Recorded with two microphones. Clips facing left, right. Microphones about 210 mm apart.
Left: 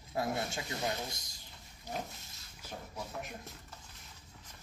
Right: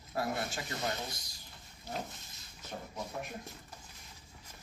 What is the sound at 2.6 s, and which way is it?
Speech, 10° left (ahead or behind).